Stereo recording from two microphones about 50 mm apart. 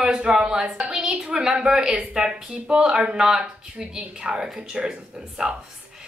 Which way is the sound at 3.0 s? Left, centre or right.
Centre.